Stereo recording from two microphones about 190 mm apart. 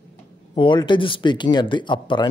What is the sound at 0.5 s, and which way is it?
A man's voice, 25° left (ahead or behind).